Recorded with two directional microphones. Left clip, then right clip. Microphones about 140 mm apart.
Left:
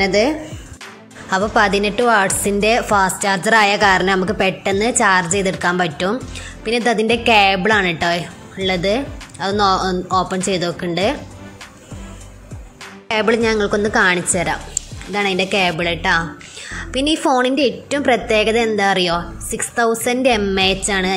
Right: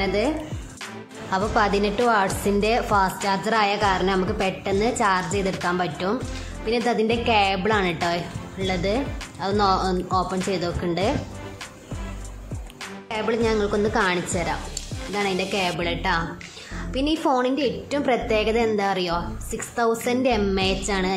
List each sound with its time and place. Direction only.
0.0 s a woman's voice: 25° left (ahead or behind)
1.3 s a woman's voice: 20° left (ahead or behind)
13.1 s a woman's voice: 35° left (ahead or behind); by 21.1 s 15° left (ahead or behind)